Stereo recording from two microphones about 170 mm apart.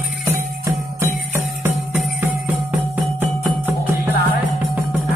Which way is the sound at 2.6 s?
10° right (ahead or behind).